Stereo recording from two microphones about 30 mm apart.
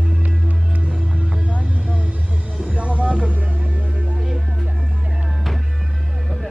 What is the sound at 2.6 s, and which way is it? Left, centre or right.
Music, right.